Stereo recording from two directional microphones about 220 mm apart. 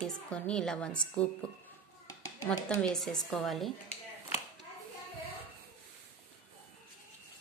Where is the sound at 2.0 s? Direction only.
15° left (ahead or behind).